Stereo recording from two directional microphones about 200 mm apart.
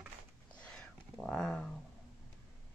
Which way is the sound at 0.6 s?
5° left (ahead or behind).